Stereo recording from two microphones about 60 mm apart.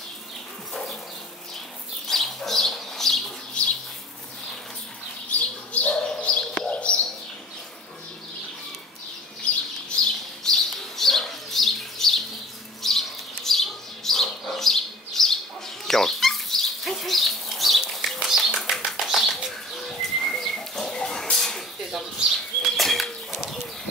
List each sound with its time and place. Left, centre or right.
2.0 s bird: centre
5.3 s bird: left
10.4 s bird: centre
15.9 s a sound: centre
18.9 s bird: centre
22.2 s bird: centre